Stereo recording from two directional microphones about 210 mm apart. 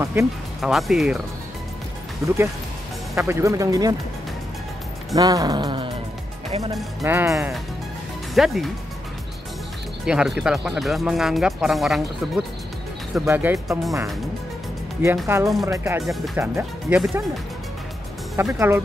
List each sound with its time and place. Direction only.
0.0 s speech: 15° right (ahead or behind)
0.6 s speech: centre (ahead or behind)
2.2 s speech: 15° right (ahead or behind)
5.1 s speech: 15° right (ahead or behind)
7.0 s speech: 10° right (ahead or behind)
8.4 s speech: centre (ahead or behind)
10.0 s speech: 5° right (ahead or behind)
15.2 s speech: 15° right (ahead or behind)
18.3 s speech: 15° right (ahead or behind)